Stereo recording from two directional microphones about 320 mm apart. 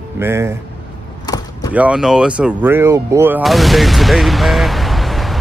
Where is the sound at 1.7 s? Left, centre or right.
Centre.